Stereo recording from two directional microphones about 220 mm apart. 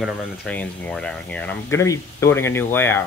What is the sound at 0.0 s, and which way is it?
Speech, 5° right (ahead or behind).